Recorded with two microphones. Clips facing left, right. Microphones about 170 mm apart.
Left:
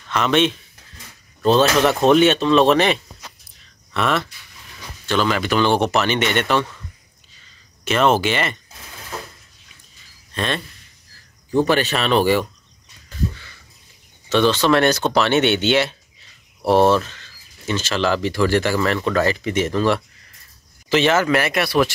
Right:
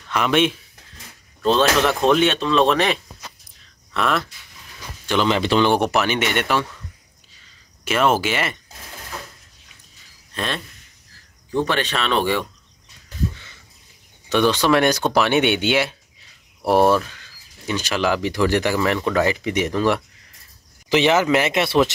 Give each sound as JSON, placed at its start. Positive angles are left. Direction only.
{"t": 0.1, "sound": "speech", "side_deg": -10}
{"t": 1.4, "sound": "speech", "side_deg": 0}
{"t": 5.0, "sound": "speech", "side_deg": -20}
{"t": 5.7, "sound": "speech", "side_deg": -10}
{"t": 7.8, "sound": "speech", "side_deg": -5}
{"t": 10.3, "sound": "speech", "side_deg": 0}
{"t": 13.3, "sound": "a sound", "side_deg": -20}
{"t": 14.3, "sound": "speech", "side_deg": -15}